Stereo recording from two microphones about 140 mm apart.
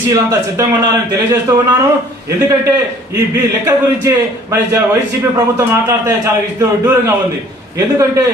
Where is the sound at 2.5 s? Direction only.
20° right (ahead or behind).